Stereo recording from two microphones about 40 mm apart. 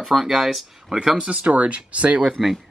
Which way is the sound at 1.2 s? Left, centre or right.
Right.